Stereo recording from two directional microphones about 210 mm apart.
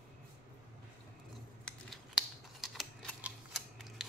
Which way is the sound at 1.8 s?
Centre (ahead or behind).